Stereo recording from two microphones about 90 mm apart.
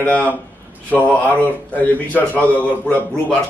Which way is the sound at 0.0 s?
15° left (ahead or behind).